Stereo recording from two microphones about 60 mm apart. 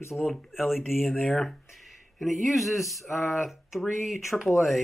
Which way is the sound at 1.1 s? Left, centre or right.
Centre.